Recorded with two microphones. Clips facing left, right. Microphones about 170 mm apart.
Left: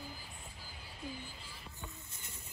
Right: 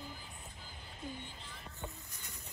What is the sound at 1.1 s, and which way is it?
Music, 5° left (ahead or behind).